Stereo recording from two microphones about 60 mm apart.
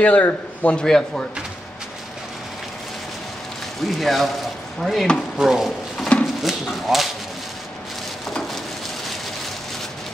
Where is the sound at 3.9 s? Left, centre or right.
Centre.